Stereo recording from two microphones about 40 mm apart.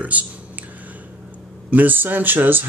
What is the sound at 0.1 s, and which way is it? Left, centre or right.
Speech, right.